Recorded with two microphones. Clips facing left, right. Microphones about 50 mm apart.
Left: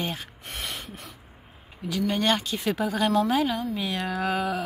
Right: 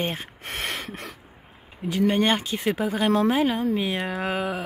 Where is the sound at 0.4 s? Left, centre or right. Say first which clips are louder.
Right 5 dB; right.